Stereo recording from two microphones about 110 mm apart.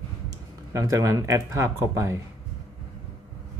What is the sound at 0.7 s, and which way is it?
Speech, 30° right (ahead or behind).